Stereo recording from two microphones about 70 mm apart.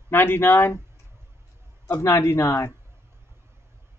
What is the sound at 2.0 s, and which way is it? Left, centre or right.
Speech, left.